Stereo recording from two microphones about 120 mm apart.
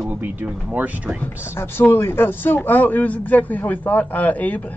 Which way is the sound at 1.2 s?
20° left (ahead or behind).